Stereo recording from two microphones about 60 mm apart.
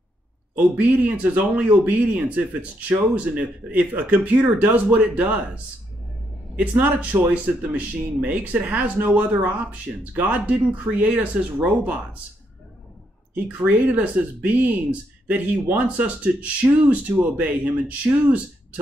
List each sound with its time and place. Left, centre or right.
0.6 s speech: right
13.3 s speech: right